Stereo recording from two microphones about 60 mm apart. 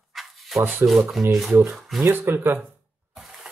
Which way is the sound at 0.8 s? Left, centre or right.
Right.